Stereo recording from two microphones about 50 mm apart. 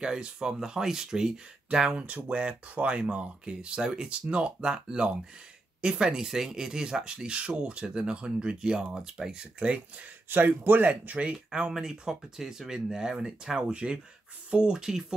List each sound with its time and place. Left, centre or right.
0.0 s speech: centre
10.3 s speech: right
11.3 s speech: centre